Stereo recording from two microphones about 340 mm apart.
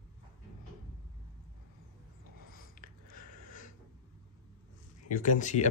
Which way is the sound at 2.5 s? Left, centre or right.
Left.